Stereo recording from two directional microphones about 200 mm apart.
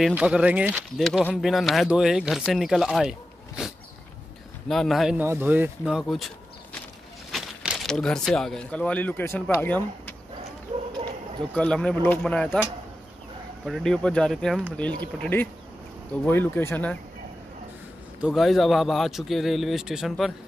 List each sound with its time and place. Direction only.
0.0 s speech: 5° right (ahead or behind); by 10.1 s 10° left (ahead or behind)
11.5 s speech: 5° left (ahead or behind)
13.7 s speech: centre (ahead or behind)
18.2 s speech: centre (ahead or behind)